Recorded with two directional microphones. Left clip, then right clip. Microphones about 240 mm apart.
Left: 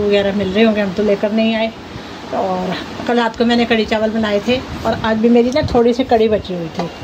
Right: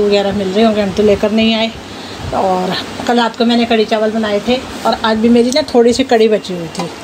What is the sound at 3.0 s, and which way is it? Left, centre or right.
A woman's voice, centre.